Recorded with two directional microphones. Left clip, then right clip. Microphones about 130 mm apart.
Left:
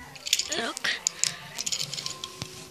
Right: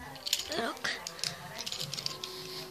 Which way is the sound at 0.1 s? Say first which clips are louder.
Left 6 dB; 15° left (ahead or behind).